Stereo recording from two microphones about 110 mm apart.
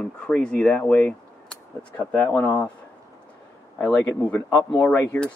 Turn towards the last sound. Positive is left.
turn(degrees=20)  # may be behind; listen again after turning